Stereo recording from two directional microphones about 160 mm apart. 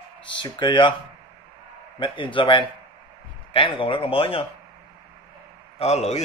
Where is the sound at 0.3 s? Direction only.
30° left (ahead or behind).